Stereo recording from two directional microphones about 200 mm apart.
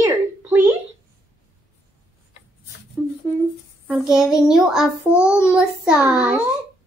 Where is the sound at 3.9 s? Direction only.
Centre (ahead or behind).